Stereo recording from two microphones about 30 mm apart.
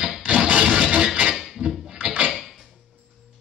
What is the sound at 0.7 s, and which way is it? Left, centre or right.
Music, right.